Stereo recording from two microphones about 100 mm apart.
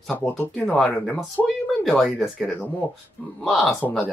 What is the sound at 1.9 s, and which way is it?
Speech, centre (ahead or behind).